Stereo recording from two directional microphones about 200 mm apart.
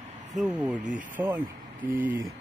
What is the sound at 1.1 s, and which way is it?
Vehicle, 10° right (ahead or behind).